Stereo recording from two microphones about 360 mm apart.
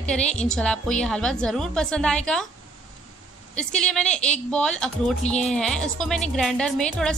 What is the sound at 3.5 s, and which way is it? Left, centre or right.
A woman's voice, centre.